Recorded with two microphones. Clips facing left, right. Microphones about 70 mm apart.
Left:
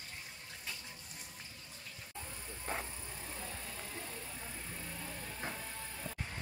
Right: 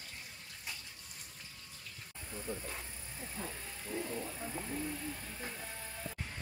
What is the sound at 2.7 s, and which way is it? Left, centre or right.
Speech, left.